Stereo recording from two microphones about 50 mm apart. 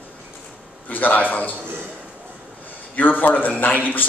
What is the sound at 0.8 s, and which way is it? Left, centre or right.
Speech, left.